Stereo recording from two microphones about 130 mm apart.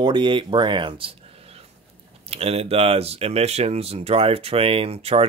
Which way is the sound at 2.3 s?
50° right (ahead or behind).